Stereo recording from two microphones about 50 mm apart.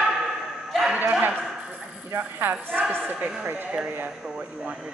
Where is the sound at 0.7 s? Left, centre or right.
Centre.